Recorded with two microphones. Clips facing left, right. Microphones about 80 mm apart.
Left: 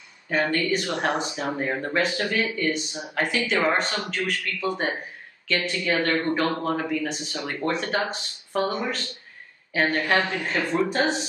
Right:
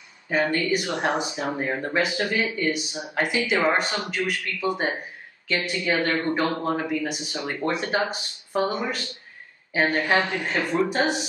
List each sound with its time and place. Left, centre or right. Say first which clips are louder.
0.3 s a woman's voice: right 1 dB; centre